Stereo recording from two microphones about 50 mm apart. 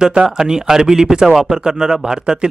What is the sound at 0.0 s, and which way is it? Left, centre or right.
A man's voice, centre.